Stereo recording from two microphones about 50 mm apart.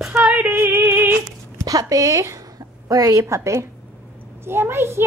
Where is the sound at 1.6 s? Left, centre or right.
Right.